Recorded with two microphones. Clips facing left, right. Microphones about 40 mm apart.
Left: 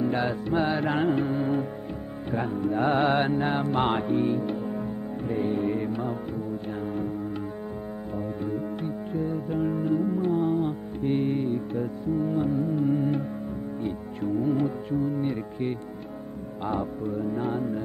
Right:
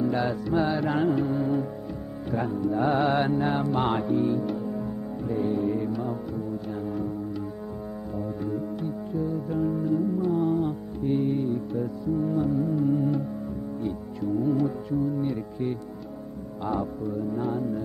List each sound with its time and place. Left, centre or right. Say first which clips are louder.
0.0 s music: even; left
6.7 s foghorn: left 1 dB; left
8.8 s music: even; left
10.3 s music: right 1 dB; left
11.0 s music: even; left
17.0 s music: even; left